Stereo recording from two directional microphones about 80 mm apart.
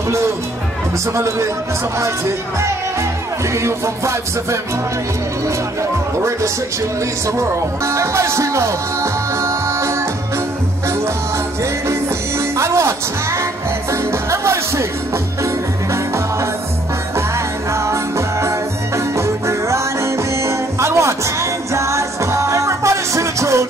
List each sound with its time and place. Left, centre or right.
1.1 s music: right
7.2 s speech: right
11.9 s music: right
17.7 s music: right